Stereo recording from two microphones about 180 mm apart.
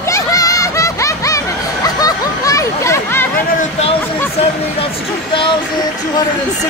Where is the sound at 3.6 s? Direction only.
35° left (ahead or behind).